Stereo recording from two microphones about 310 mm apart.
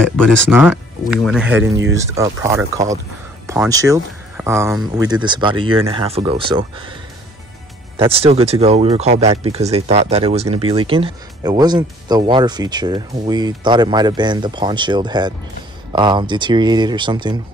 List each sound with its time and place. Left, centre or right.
0.0 s speech: centre
1.6 s speech: right
2.0 s speech: centre
8.0 s speech: centre